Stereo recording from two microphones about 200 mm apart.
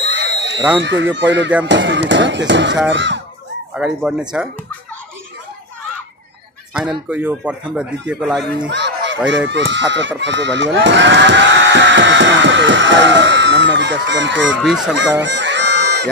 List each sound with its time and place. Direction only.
0.0 s a sound: 60° right (ahead or behind)
0.6 s speech: 15° right (ahead or behind)
1.1 s music: 60° right (ahead or behind)
3.7 s speech: 5° right (ahead or behind)
6.7 s speech: 5° right (ahead or behind)
8.6 s a sound: 60° right (ahead or behind)
9.3 s speech: 65° right (ahead or behind)
14.6 s speech: 5° right (ahead or behind)
15.0 s a sound: 60° right (ahead or behind)